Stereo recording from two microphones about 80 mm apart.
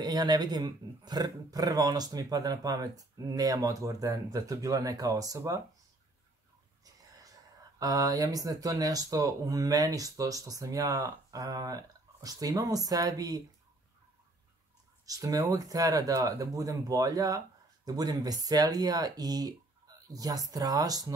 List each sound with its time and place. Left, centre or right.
0.0 s speech: right
6.8 s a sound: right
7.8 s speech: right
15.0 s speech: right